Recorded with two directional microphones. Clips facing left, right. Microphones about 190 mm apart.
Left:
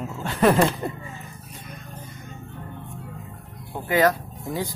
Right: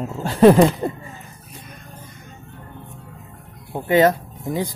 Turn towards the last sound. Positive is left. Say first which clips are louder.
# right 4 dB
turn(degrees=-20)  # may be behind; listen again after turning